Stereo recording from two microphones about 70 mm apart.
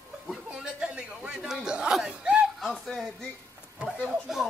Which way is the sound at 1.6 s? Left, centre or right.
Centre.